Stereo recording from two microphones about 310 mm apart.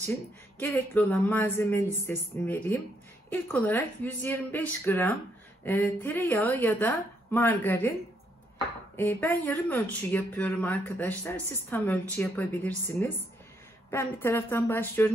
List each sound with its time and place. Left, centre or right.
0.0 s a woman's voice: centre
8.9 s speech: centre